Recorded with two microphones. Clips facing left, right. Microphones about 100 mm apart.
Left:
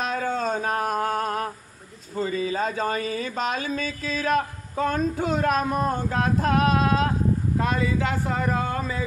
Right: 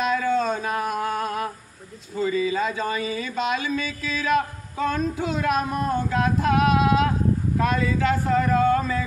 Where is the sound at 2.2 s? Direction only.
40° left (ahead or behind).